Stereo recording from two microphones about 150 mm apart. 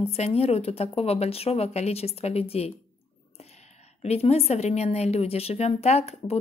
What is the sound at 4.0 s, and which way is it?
A woman's voice, 45° left (ahead or behind).